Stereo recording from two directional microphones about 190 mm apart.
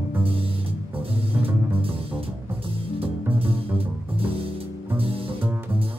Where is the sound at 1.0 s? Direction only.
30° right (ahead or behind).